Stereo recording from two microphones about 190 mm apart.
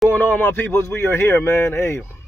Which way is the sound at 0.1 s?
10° left (ahead or behind).